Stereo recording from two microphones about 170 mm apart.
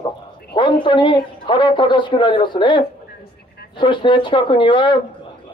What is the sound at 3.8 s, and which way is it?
Speech, 30° left (ahead or behind).